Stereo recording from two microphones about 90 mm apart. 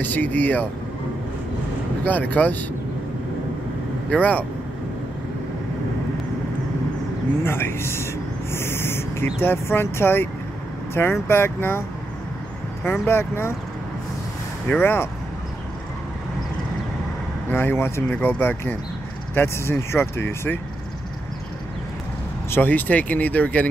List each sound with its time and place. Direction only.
0.0 s speech: 20° left (ahead or behind)
2.0 s speech: 15° left (ahead or behind)
4.1 s speech: 15° left (ahead or behind)
7.4 s speech: 25° left (ahead or behind)
12.8 s speech: 20° left (ahead or behind)
14.8 s speech: 25° left (ahead or behind)
17.5 s speech: 25° left (ahead or behind)
22.5 s speech: 20° left (ahead or behind)